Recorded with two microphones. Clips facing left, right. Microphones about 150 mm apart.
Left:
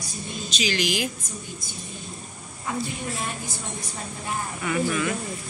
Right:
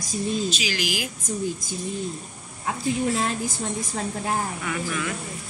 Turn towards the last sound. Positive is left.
turn(degrees=5)  # may be behind; listen again after turning